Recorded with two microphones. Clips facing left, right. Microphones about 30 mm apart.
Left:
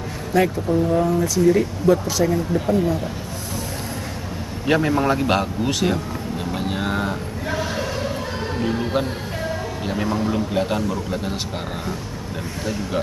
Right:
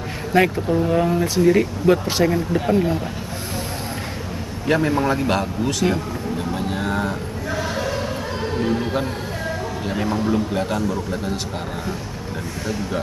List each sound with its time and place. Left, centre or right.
0.3 s speech: right
2.3 s speech: right
4.6 s a man's voice: centre
6.5 s a sound: centre
9.8 s a man's voice: centre